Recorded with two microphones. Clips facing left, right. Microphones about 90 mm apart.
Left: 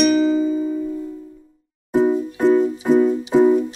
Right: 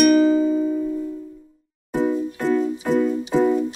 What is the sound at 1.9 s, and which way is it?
Music, 20° left (ahead or behind).